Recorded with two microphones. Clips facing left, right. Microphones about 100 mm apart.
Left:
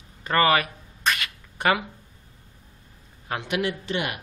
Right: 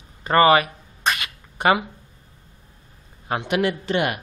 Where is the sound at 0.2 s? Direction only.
25° right (ahead or behind).